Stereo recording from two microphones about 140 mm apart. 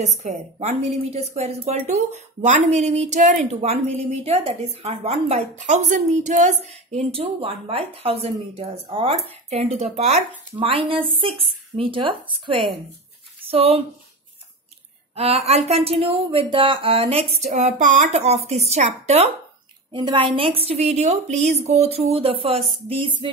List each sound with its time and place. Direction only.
0.0 s a woman's voice: 55° right (ahead or behind)
15.1 s a woman's voice: 45° right (ahead or behind)
19.9 s a woman's voice: 35° right (ahead or behind)